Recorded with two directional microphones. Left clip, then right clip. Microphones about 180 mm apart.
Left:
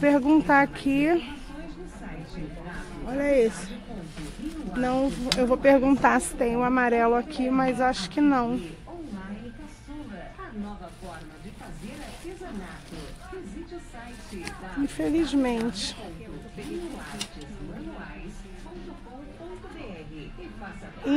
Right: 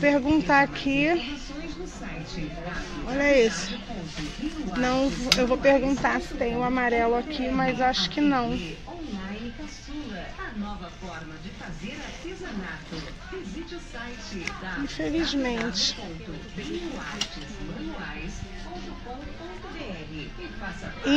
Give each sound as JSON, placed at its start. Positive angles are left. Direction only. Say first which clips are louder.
{"t": 0.0, "sound": "speech", "louder": "left 1 dB", "side_deg": 40}
{"t": 3.1, "sound": "speech", "louder": "right 2 dB", "side_deg": 20}
{"t": 4.7, "sound": "speech", "louder": "right 1 dB", "side_deg": 30}
{"t": 5.6, "sound": "a woman's voice", "louder": "left 2 dB", "side_deg": 55}
{"t": 15.0, "sound": "speech", "louder": "left 2 dB", "side_deg": 40}